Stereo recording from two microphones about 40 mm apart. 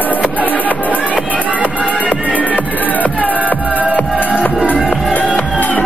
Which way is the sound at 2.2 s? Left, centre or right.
Left.